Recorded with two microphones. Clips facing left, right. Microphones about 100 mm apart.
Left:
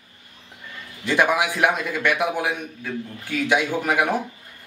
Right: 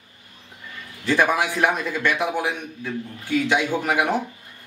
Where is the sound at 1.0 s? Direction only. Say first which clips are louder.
Even; 15° left (ahead or behind).